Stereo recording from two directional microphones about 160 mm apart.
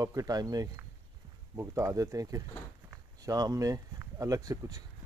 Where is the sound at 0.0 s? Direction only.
20° right (ahead or behind).